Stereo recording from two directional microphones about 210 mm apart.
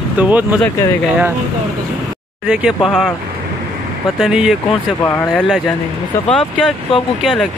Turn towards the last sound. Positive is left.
turn(degrees=0)  # may be behind; listen again after turning